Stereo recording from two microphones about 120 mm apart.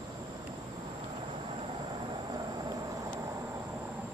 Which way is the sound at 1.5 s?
45° right (ahead or behind).